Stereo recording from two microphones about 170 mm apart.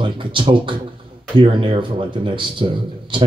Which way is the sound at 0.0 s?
30° right (ahead or behind).